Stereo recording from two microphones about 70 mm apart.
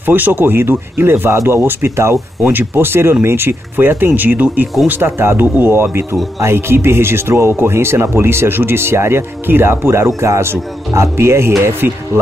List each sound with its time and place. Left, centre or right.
0.0 s speech: right
11.8 s speech: right